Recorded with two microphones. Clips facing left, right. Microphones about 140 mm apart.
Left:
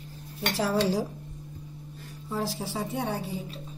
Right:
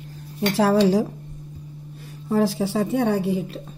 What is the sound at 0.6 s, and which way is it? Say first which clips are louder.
Speech: right 8 dB; 80° right.